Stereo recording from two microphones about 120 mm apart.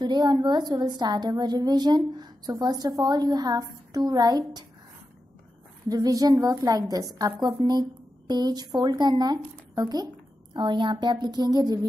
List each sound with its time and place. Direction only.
0.0 s a woman's voice: 35° right (ahead or behind)
5.9 s a woman's voice: 30° right (ahead or behind)